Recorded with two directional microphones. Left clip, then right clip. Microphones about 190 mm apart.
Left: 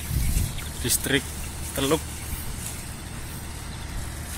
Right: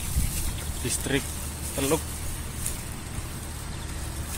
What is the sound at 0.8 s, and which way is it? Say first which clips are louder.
Speech: left 4 dB; 15° left (ahead or behind).